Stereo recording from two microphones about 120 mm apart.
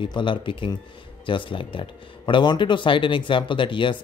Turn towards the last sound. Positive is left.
turn(degrees=45)  # may be behind; listen again after turning